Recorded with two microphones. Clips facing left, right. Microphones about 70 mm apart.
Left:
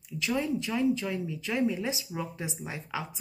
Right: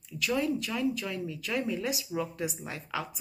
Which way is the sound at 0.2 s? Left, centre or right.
Left.